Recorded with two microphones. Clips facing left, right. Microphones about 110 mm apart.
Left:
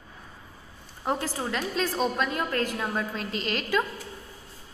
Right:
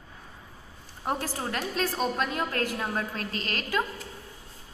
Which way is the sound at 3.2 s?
50° right (ahead or behind).